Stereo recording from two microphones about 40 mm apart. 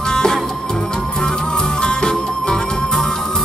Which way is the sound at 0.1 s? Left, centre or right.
Centre.